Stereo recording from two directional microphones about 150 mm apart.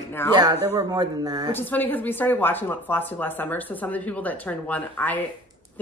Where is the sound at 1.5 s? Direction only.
10° left (ahead or behind).